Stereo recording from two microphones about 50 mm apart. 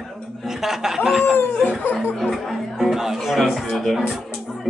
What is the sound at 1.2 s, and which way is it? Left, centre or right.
Snicker, left.